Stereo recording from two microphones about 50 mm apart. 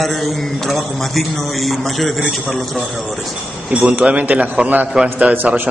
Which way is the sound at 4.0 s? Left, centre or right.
Right.